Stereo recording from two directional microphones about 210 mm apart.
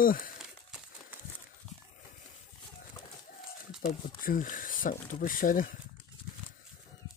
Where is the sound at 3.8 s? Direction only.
40° left (ahead or behind).